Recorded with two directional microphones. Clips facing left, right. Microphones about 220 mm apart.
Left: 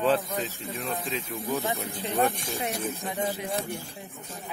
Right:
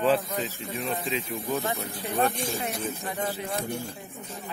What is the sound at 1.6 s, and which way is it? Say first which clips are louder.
Speech: even; 15° left (ahead or behind).